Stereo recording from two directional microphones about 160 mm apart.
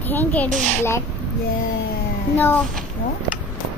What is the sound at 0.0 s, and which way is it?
A child's voice, 10° left (ahead or behind).